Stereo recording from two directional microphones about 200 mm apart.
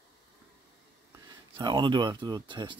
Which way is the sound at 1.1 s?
20° right (ahead or behind).